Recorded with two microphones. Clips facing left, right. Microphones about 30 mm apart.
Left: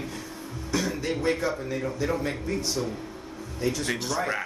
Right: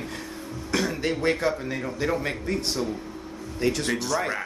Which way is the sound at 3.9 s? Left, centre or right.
Centre.